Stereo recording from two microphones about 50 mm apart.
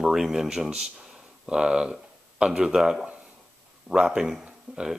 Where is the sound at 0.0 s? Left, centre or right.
Centre.